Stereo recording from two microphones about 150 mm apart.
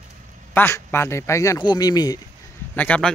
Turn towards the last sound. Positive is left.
turn(degrees=10)  # may be behind; listen again after turning